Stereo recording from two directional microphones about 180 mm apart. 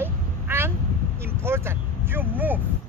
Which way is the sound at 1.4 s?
15° right (ahead or behind).